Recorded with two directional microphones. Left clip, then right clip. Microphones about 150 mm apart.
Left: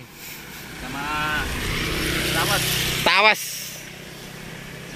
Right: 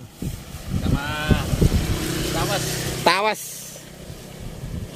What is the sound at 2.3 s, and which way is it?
Vehicle, 40° right (ahead or behind).